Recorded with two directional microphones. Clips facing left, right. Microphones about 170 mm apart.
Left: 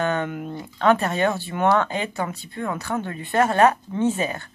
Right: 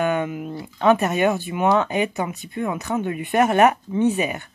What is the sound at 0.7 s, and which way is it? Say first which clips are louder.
Speech: right 2 dB; 15° right (ahead or behind).